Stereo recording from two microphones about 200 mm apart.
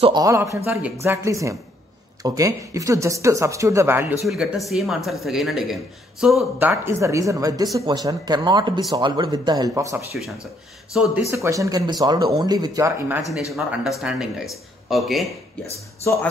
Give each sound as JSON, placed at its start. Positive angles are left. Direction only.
{"t": 0.0, "sound": "speech", "side_deg": -20}
{"t": 4.3, "sound": "a man's voice", "side_deg": 0}
{"t": 11.2, "sound": "speech", "side_deg": -15}
{"t": 13.5, "sound": "a man's voice", "side_deg": 0}
{"t": 16.0, "sound": "speech", "side_deg": 15}